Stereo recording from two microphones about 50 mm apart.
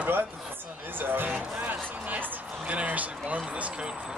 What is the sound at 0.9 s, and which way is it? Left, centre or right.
Music, right.